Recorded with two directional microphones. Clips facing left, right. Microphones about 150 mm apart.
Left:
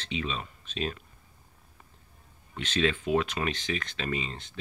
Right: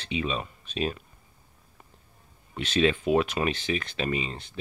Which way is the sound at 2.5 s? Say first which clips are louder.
Right 4 dB; 10° right (ahead or behind).